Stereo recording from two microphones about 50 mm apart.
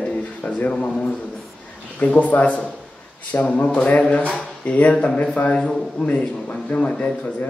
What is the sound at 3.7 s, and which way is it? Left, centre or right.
Speech, left.